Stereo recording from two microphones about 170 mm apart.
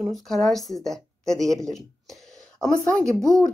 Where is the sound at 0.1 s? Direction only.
Centre (ahead or behind).